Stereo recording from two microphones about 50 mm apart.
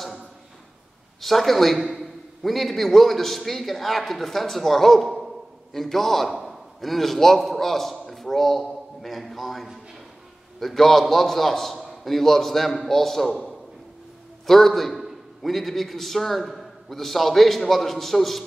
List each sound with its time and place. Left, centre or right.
1.2 s a man's voice: centre
14.4 s a man's voice: centre